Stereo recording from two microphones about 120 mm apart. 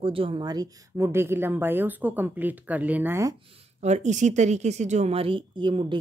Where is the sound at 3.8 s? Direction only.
75° right (ahead or behind).